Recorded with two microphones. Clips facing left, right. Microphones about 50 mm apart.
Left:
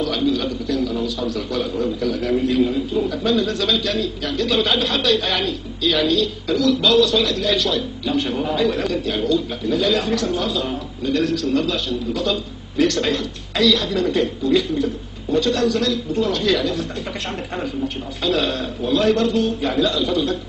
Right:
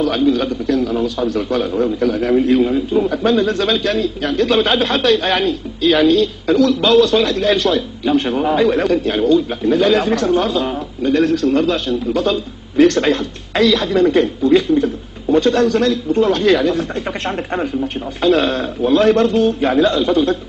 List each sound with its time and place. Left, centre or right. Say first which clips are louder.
0.0 s a man's voice: right 5 dB; right
18.2 s a man's voice: right 6 dB; right